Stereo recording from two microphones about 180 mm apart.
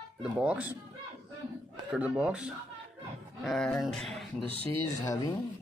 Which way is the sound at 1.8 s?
5° right (ahead or behind).